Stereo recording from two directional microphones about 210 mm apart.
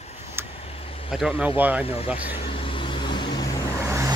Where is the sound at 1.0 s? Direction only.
5° right (ahead or behind).